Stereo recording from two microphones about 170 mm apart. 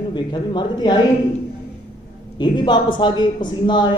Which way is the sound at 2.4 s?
25° left (ahead or behind).